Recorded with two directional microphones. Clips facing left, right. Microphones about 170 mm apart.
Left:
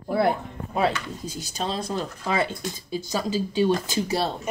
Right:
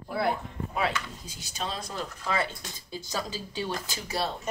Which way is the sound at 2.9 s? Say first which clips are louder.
Left 7 dB; 15° left (ahead or behind).